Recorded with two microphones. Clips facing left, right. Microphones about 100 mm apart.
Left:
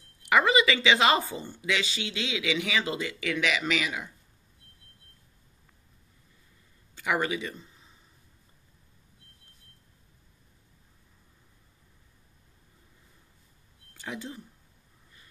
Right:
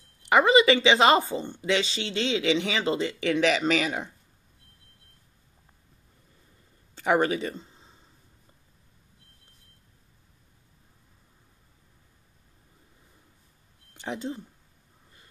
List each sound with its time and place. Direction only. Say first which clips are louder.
0.3 s speech: right 4 dB; 20° right (ahead or behind); by 4.1 s 35° right (ahead or behind)
7.0 s speech: right 5 dB; 35° right (ahead or behind)
13.9 s speech: right 5 dB; 25° right (ahead or behind)